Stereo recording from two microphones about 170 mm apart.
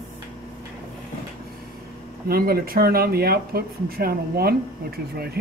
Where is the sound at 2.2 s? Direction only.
65° right (ahead or behind).